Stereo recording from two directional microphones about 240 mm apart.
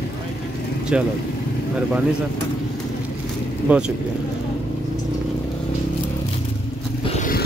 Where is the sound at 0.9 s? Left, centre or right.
Centre.